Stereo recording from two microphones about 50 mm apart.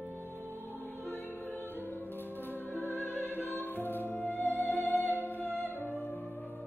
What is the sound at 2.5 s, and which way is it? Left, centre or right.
Music, left.